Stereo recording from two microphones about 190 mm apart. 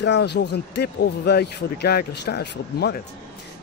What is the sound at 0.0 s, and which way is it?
Speech, 65° left (ahead or behind).